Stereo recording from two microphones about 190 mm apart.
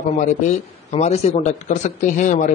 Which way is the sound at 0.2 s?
40° left (ahead or behind).